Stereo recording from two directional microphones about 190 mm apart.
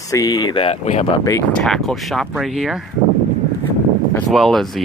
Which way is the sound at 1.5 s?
Centre (ahead or behind).